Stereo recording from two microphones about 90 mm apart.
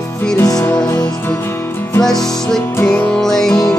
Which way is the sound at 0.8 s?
45° left (ahead or behind).